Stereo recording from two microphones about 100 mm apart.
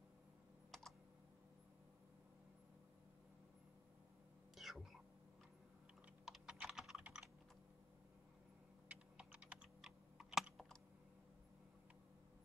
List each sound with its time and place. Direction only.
0.7 s computer keyboard: 5° left (ahead or behind)
4.6 s cat: centre (ahead or behind)
6.2 s typing: 5° right (ahead or behind)
7.0 s computer keyboard: 10° right (ahead or behind)
8.8 s typing: 10° right (ahead or behind)